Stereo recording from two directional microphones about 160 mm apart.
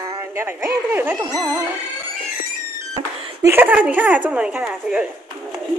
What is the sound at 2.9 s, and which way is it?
Speech, 20° right (ahead or behind).